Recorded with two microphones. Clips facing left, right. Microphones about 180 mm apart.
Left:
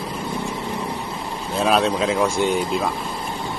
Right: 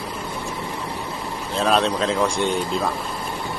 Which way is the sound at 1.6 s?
5° left (ahead or behind).